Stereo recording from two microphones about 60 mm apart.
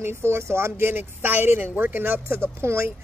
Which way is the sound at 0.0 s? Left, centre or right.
Right.